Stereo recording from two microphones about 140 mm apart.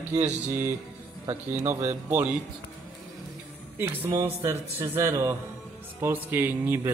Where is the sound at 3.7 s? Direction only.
15° right (ahead or behind).